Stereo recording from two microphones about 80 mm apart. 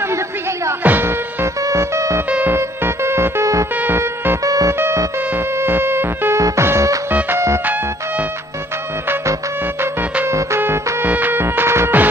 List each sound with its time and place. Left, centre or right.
0.8 s music: right
1.6 s music: right
4.5 s music: right
4.7 s music: right
7.1 s music: right
9.1 s music: right